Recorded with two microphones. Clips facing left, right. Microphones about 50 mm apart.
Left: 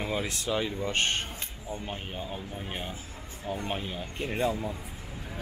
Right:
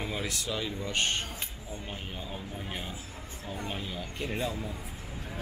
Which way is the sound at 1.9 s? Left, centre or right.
Centre.